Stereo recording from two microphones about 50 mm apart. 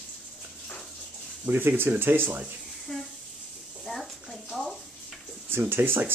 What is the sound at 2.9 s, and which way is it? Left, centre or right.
Speech, centre.